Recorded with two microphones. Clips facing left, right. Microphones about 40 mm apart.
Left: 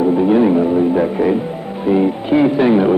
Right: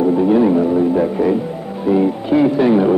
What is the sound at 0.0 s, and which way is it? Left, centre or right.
Music, left.